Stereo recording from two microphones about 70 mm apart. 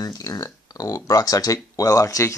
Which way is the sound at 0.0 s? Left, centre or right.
Left.